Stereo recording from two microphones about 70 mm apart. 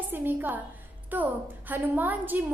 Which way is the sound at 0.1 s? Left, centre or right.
Right.